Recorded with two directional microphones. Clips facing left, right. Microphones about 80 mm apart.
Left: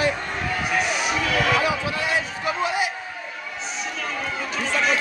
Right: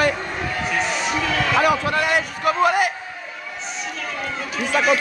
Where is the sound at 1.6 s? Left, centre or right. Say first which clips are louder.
Right 5 dB; right.